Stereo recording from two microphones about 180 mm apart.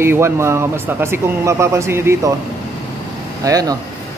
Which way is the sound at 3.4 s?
20° right (ahead or behind).